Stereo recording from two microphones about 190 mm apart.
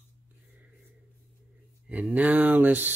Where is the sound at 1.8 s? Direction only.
10° right (ahead or behind).